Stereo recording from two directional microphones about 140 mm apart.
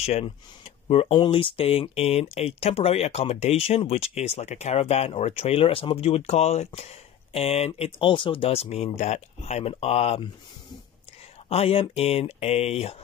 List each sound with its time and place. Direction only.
0.0 s speech: 50° left (ahead or behind)
11.4 s speech: 45° left (ahead or behind)